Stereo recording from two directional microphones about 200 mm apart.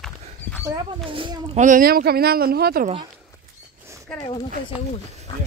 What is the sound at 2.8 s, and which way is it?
Speech, 25° right (ahead or behind).